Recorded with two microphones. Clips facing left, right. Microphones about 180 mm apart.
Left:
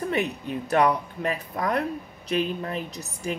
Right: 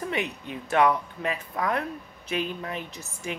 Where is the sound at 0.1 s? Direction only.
40° left (ahead or behind).